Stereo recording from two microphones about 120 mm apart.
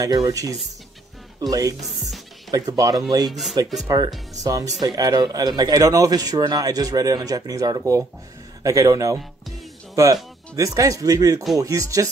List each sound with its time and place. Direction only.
0.0 s speech: 30° right (ahead or behind)
3.3 s speech: centre (ahead or behind)
3.8 s speech: 30° right (ahead or behind)
10.5 s speech: 30° right (ahead or behind)